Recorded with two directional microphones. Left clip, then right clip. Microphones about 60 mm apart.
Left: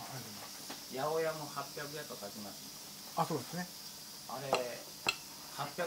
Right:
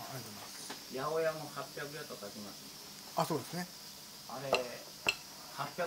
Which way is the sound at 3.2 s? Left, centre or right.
Right.